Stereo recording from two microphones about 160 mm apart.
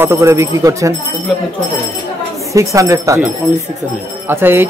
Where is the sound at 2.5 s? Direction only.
20° right (ahead or behind).